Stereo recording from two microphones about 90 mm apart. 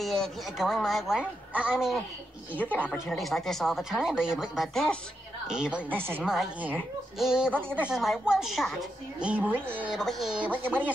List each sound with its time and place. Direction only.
0.0 s a woman's voice: 5° left (ahead or behind)
2.6 s a woman's voice: 20° right (ahead or behind)
2.9 s a woman's voice: 5° left (ahead or behind); by 6.2 s 25° right (ahead or behind)
6.2 s a woman's voice: 5° right (ahead or behind)
9.2 s a woman's voice: 15° right (ahead or behind)
9.9 s speech: centre (ahead or behind)
10.3 s speech: 15° right (ahead or behind)